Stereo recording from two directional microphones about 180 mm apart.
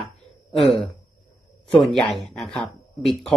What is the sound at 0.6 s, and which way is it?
Speech, centre (ahead or behind).